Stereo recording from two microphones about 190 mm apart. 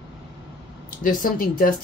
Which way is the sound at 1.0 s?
45° left (ahead or behind).